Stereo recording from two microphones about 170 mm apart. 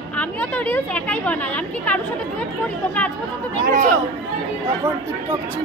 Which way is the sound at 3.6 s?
50° right (ahead or behind).